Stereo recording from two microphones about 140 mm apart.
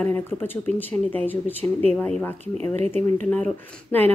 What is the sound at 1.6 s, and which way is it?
Speech, 45° right (ahead or behind).